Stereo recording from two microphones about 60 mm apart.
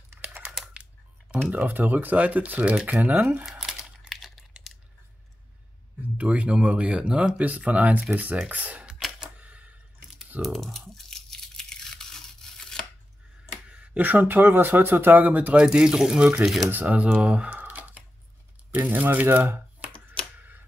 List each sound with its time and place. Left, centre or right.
1.5 s speech: right
3.4 s crumpling: centre
6.1 s speech: right
9.4 s a sound: right
10.4 s speech: centre
11.1 s tearing: centre
13.7 s speech: right
15.5 s speech: centre
16.7 s speech: right